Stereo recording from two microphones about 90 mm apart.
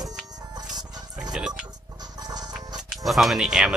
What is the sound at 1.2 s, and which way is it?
Music, 10° right (ahead or behind).